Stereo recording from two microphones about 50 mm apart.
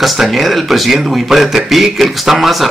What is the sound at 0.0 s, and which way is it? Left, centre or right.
A man's voice, centre.